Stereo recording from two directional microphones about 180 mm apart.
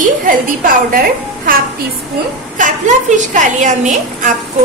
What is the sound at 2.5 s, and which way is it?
A woman's voice, 45° right (ahead or behind).